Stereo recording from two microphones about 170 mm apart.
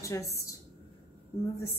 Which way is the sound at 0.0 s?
20° left (ahead or behind).